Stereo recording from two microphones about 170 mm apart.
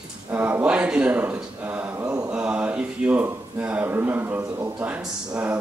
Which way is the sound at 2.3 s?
10° right (ahead or behind).